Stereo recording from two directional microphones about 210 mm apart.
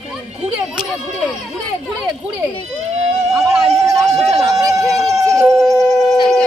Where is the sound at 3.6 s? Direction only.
15° right (ahead or behind).